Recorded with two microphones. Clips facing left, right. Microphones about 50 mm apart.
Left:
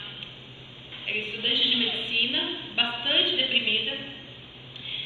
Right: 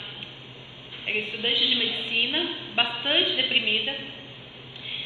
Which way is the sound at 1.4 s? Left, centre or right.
Right.